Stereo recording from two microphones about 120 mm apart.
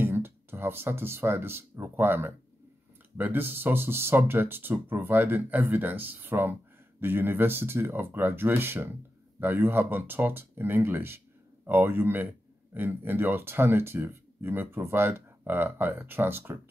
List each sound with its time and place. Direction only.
0.0 s speech: 20° right (ahead or behind)